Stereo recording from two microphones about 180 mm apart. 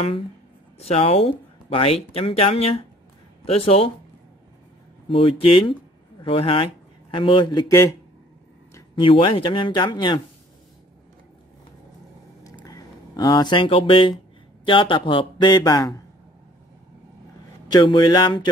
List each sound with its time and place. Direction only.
0.7 s speech: 35° left (ahead or behind)
5.1 s speech: 30° left (ahead or behind)
8.9 s speech: 30° left (ahead or behind)
12.4 s a sound: 20° left (ahead or behind)
14.7 s speech: 30° left (ahead or behind)
17.6 s speech: 25° left (ahead or behind)